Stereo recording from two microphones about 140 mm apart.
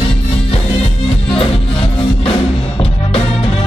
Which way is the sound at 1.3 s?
40° left (ahead or behind).